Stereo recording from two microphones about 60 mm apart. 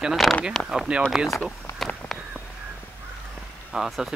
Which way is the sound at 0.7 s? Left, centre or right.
Centre.